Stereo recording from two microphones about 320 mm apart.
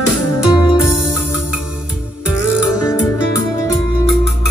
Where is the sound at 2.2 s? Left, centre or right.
Left.